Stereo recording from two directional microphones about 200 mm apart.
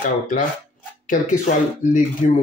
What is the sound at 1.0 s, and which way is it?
Speech, 40° left (ahead or behind).